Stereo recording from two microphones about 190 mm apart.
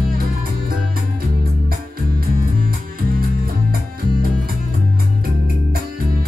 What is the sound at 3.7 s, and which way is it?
Music, 50° right (ahead or behind).